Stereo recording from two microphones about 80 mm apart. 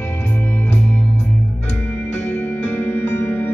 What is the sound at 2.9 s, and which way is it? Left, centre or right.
Music, left.